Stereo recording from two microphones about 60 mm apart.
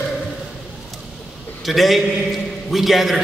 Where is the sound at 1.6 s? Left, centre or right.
Centre.